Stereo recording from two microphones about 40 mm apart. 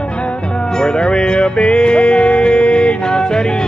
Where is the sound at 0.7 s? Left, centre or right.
Centre.